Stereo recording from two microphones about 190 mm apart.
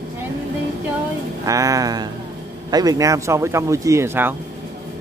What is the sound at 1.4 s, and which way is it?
Speech, 15° right (ahead or behind).